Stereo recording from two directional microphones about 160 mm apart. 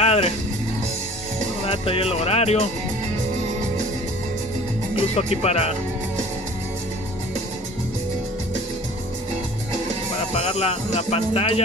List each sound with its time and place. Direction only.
0.0 s music: 40° left (ahead or behind)
1.7 s speech: 35° left (ahead or behind)
5.1 s speech: 40° left (ahead or behind)
10.3 s speech: 40° left (ahead or behind)